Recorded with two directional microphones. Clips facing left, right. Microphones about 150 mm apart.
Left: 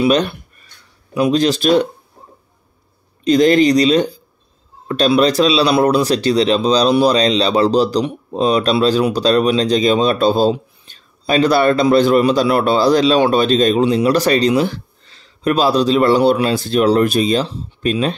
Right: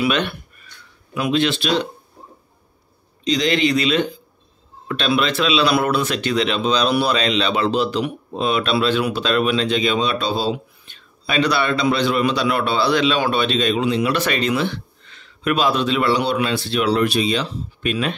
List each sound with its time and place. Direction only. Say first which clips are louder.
0.0 s speech: left 6 dB; 40° left (ahead or behind)
3.3 s speech: left 8 dB; 50° left (ahead or behind)
10.5 s speech: left 4 dB; 35° left (ahead or behind)